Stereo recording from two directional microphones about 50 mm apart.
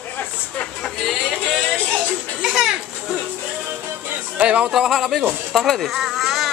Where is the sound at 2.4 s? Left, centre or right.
Centre.